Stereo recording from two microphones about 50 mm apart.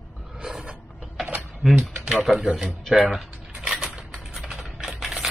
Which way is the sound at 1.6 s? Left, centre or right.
Centre.